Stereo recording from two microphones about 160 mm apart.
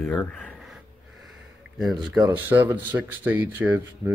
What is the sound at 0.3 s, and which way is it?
Speech, 5° left (ahead or behind).